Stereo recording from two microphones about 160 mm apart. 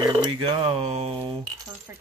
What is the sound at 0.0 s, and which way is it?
Speech, 30° right (ahead or behind).